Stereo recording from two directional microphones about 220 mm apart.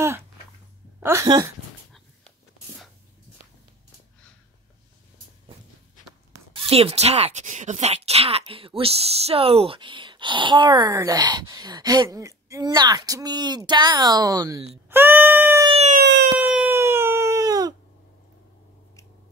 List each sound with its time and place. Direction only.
1.0 s speech: 15° right (ahead or behind)
6.5 s speech: 25° right (ahead or behind)
14.9 s a sound: 10° right (ahead or behind)
15.7 s siren: 30° right (ahead or behind)
16.0 s siren: 50° right (ahead or behind)
16.3 s a sound: 5° right (ahead or behind)